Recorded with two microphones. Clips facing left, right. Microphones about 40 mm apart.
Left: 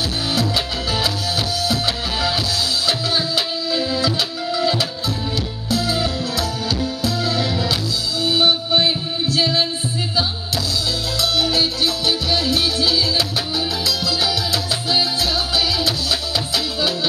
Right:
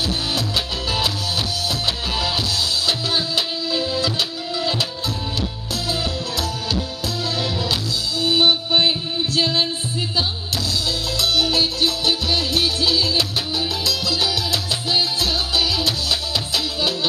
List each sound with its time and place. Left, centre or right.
3.3 s music: right
8.2 s music: right
11.5 s music: right